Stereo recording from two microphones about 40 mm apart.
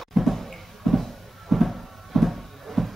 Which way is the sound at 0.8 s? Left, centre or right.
Centre.